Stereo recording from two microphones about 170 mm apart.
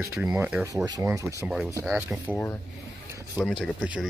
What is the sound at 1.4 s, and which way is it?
Speech, centre (ahead or behind).